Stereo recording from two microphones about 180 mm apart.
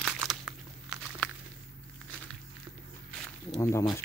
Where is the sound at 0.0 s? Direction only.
Centre (ahead or behind).